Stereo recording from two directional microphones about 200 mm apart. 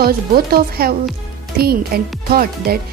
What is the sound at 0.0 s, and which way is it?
Speech, 50° right (ahead or behind).